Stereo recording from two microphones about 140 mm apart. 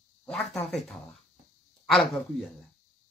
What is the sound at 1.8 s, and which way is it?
Speech, centre (ahead or behind).